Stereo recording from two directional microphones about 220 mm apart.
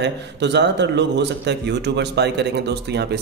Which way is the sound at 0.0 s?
50° right (ahead or behind).